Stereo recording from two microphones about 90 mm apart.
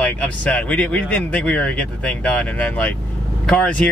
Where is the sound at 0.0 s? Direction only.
15° left (ahead or behind).